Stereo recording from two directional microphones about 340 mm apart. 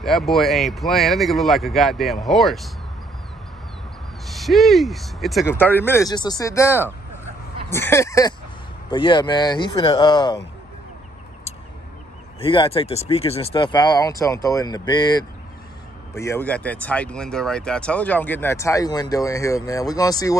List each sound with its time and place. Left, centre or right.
0.0 s speech: centre
4.3 s speech: centre
12.4 s speech: centre